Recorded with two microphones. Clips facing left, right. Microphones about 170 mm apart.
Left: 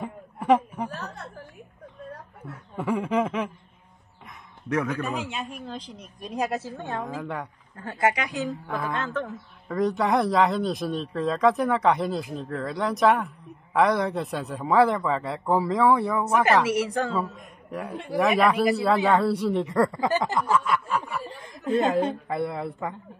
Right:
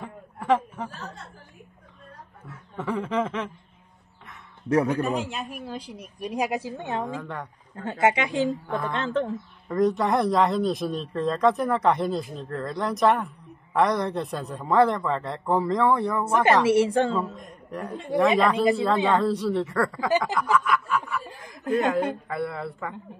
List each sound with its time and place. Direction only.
0.0 s a sound: 20° left (ahead or behind)
2.7 s speech: 10° left (ahead or behind)
4.6 s a man's voice: 35° right (ahead or behind)
5.3 s a woman's voice: centre (ahead or behind)
7.1 s speech: 10° left (ahead or behind)
7.7 s speech: 25° right (ahead or behind)
8.6 s speech: 10° left (ahead or behind)
8.9 s speech: 25° right (ahead or behind)
9.7 s speech: centre (ahead or behind)
16.4 s speech: 30° right (ahead or behind)
17.4 s a man's voice: 10° left (ahead or behind)
18.1 s speech: 25° right (ahead or behind)
19.0 s a woman's voice: 10° left (ahead or behind)